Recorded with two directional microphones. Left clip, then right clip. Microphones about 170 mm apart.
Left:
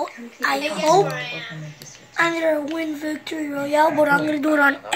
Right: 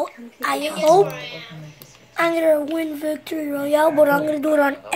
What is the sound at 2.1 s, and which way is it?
A woman's voice, 65° right (ahead or behind).